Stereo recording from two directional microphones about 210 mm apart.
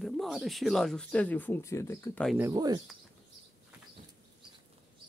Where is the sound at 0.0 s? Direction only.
Centre (ahead or behind).